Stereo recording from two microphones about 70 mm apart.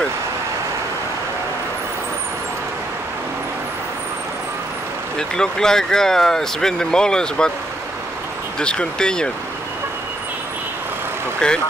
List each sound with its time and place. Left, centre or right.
5.3 s speech: centre
8.5 s speech: centre
11.4 s speech: centre